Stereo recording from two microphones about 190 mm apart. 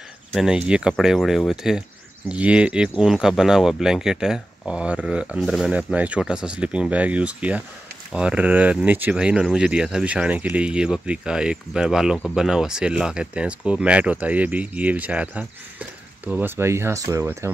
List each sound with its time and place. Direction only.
0.3 s speech: 5° right (ahead or behind)